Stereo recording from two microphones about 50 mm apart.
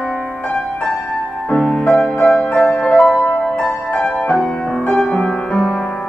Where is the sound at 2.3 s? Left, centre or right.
Left.